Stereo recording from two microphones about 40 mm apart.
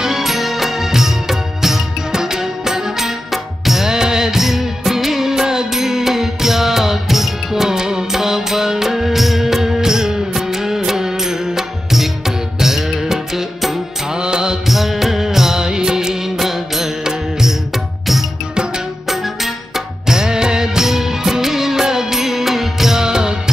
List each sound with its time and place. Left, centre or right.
0.0 s music of bollywood: centre
12.5 s music: centre
14.1 s music: centre
14.7 s music: centre
20.1 s music: centre